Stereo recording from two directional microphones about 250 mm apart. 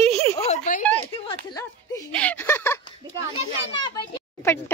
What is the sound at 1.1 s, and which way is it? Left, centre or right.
Speech, centre.